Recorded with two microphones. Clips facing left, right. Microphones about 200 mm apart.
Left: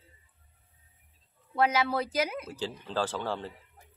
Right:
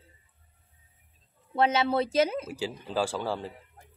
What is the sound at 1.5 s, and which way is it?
Speech, 25° right (ahead or behind).